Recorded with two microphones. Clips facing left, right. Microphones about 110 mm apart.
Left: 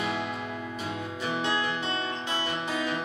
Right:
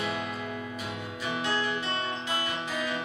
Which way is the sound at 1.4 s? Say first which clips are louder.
Even; 30° left (ahead or behind).